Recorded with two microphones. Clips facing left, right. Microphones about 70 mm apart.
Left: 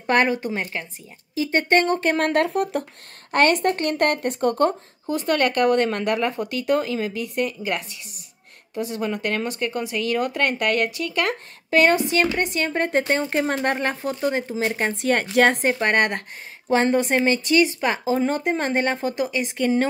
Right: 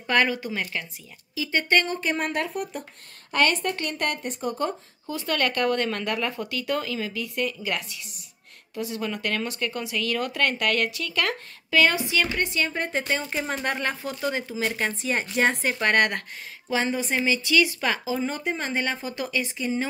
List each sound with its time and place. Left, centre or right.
0.0 s a woman's voice: left
1.9 s speech: left
3.3 s a woman's voice: left
4.3 s speech: left
5.0 s a woman's voice: left
11.2 s a woman's voice: left
14.6 s speech: left
15.0 s speech: left
15.6 s a woman's voice: left
17.5 s a woman's voice: left
19.5 s speech: left